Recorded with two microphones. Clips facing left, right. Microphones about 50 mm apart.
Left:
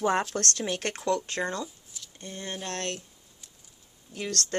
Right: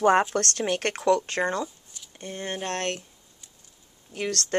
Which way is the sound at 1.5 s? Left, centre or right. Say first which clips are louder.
Right 5 dB; right.